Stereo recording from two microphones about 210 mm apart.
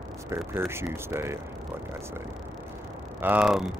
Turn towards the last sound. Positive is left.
turn(degrees=0)  # may be behind; listen again after turning